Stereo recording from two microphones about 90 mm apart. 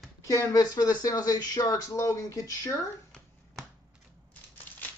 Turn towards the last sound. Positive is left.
turn(degrees=20)  # may be behind; listen again after turning